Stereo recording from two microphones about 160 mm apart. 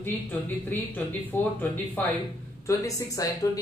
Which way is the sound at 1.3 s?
15° left (ahead or behind).